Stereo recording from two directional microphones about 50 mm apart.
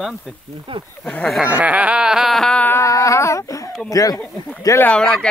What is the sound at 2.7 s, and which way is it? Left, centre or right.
Speech, left.